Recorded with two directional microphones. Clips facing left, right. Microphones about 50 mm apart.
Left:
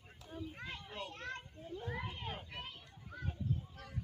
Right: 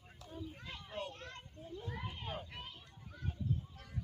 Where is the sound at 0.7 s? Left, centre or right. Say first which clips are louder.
Right 1 dB; left.